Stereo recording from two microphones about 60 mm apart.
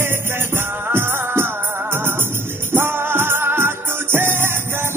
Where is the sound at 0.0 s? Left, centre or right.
Right.